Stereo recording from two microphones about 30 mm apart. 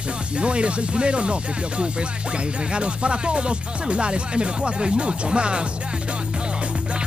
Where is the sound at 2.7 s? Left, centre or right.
Right.